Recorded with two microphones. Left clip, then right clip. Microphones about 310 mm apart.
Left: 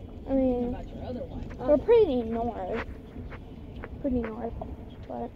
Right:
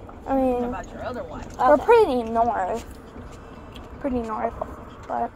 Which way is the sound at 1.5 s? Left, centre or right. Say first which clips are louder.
Right 6 dB; right.